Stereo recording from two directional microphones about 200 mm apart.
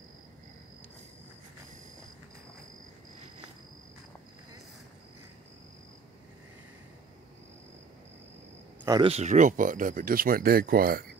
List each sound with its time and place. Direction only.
8.8 s speech: 20° right (ahead or behind)
9.1 s speech: 35° right (ahead or behind)